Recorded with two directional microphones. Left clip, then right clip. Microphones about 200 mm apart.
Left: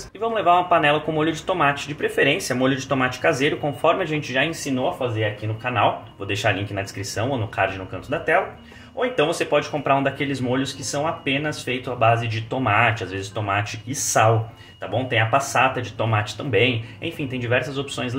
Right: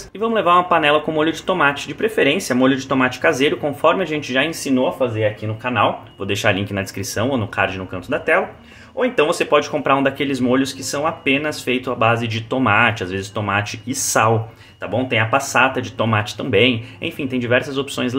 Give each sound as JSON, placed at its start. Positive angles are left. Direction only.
{"t": 0.2, "sound": "speech", "side_deg": -35}
{"t": 5.6, "sound": "speech", "side_deg": -40}